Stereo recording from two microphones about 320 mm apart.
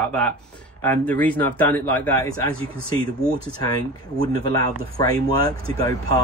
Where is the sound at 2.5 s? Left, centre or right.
Centre.